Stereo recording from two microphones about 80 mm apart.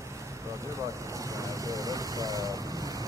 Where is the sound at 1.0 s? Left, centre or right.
Right.